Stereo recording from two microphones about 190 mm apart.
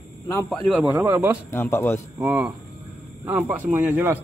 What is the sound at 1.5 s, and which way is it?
Speech, 10° left (ahead or behind).